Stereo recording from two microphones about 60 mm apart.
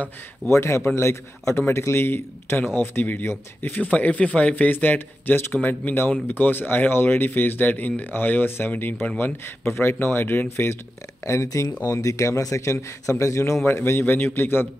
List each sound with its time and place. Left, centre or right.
0.5 s a man's voice: left
11.4 s a man's voice: left
13.7 s speech: left